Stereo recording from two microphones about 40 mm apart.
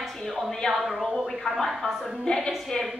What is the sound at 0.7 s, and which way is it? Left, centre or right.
A woman's voice, centre.